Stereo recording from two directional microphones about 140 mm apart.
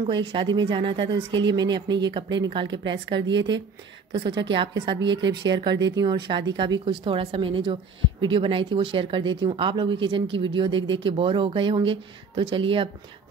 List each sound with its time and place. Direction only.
0.1 s speech: 35° right (ahead or behind)